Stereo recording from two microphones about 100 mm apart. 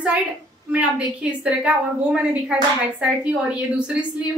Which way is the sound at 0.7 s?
10° right (ahead or behind).